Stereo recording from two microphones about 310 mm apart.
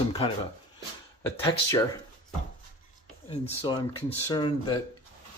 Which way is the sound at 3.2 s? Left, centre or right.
Centre.